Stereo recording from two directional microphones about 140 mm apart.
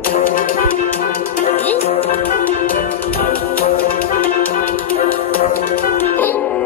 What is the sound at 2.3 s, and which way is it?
Music, 75° left (ahead or behind).